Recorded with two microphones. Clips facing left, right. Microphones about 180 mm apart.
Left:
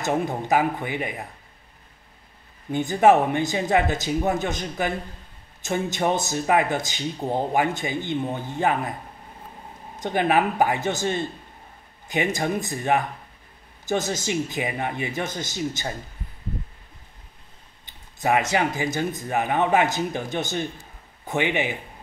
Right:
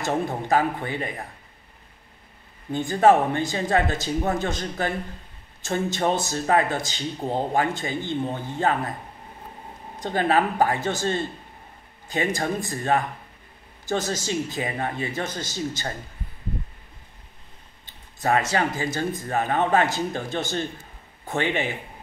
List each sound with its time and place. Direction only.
0.0 s speech: 15° left (ahead or behind)
2.7 s speech: 20° left (ahead or behind)
9.9 s speech: 15° left (ahead or behind)
17.8 s speech: 15° left (ahead or behind)